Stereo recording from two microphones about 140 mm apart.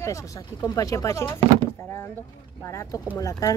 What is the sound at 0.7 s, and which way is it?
Speech, 25° left (ahead or behind).